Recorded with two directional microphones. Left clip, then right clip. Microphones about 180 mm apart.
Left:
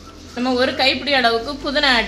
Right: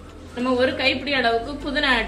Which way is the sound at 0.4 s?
50° left (ahead or behind).